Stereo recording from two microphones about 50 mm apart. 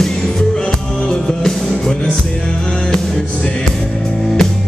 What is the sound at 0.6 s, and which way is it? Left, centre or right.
Music, centre.